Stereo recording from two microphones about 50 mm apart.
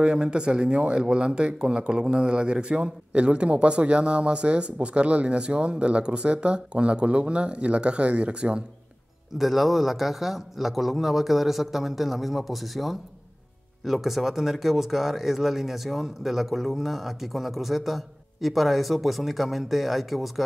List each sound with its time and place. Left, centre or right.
0.0 s speech: centre
9.4 s speech: centre